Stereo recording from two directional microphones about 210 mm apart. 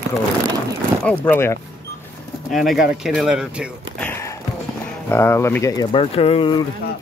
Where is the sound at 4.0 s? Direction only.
10° left (ahead or behind).